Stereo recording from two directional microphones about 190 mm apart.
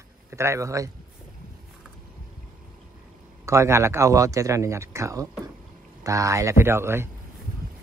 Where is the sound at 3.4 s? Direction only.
15° right (ahead or behind).